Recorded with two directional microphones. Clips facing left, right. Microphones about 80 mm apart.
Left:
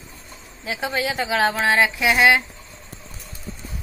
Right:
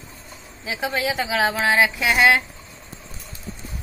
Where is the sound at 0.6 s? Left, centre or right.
Centre.